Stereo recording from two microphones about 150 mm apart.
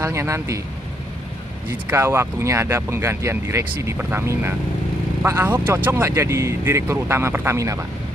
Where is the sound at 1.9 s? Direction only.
15° right (ahead or behind).